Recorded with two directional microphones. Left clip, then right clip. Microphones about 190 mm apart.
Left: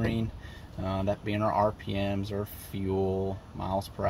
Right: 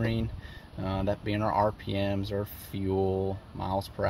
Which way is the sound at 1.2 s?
50° right (ahead or behind).